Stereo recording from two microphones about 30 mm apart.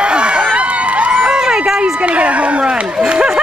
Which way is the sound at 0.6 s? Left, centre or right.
Right.